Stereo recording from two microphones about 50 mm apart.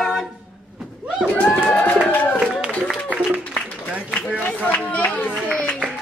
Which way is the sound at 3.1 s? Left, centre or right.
Right.